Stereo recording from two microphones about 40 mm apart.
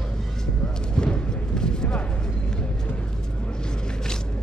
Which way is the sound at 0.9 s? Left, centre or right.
Left.